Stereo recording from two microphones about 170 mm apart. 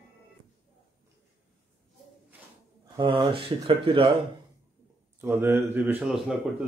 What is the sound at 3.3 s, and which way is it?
Speech, 30° right (ahead or behind).